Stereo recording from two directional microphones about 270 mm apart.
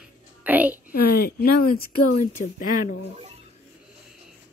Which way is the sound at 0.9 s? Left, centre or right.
Left.